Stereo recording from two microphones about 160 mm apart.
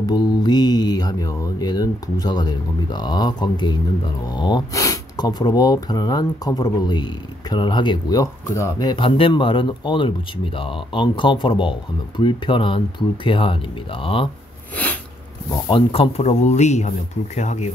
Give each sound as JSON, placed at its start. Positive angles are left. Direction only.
{"t": 0.0, "sound": "speech", "side_deg": 25}
{"t": 15.7, "sound": "speech", "side_deg": 40}